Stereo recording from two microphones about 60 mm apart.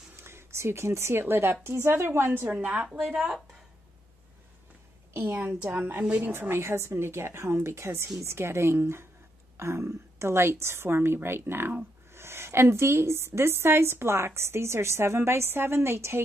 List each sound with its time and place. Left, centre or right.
0.1 s a sound: right
1.2 s a woman's voice: right
2.4 s speech: right
5.1 s a woman's voice: right
6.5 s a woman's voice: right